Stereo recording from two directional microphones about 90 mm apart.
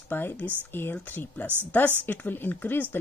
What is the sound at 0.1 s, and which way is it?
A woman's voice, 20° left (ahead or behind).